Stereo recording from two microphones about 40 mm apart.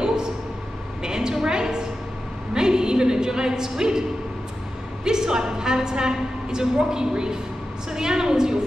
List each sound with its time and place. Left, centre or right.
0.0 s a sound: centre
2.5 s speech: centre
5.0 s a woman's voice: centre